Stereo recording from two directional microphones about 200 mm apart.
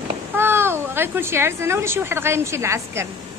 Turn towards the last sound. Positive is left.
turn(degrees=-15)  # may be behind; listen again after turning